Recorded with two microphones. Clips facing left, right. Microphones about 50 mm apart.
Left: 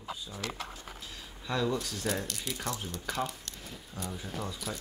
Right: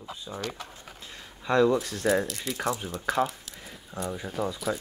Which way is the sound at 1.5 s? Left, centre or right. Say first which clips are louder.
Right 9 dB; right.